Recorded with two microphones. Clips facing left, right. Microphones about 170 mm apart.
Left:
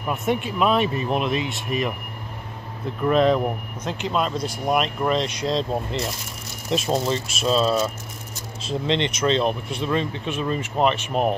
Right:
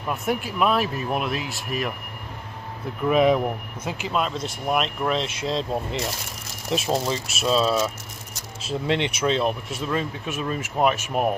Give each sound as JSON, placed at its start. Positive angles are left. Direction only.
{"t": 0.0, "sound": "speech", "side_deg": 0}
{"t": 3.0, "sound": "speech", "side_deg": -10}